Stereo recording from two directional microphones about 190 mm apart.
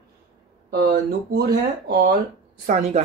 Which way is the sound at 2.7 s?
35° right (ahead or behind).